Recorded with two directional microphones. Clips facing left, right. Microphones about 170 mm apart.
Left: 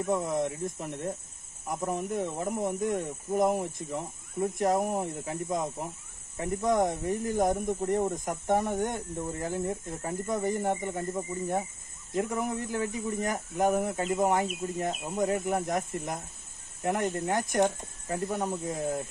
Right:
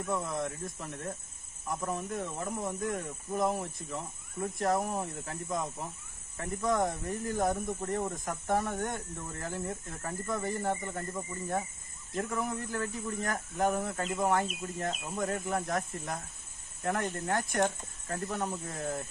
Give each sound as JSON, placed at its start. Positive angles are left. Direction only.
{"t": 0.1, "sound": "speech", "side_deg": 20}